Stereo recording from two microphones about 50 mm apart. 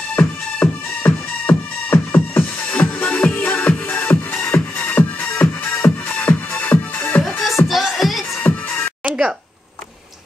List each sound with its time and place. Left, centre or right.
0.1 s music: left
7.2 s music: centre
8.4 s music: left
9.0 s a sound: centre